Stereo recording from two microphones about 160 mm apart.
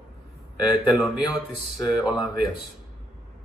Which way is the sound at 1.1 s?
25° left (ahead or behind).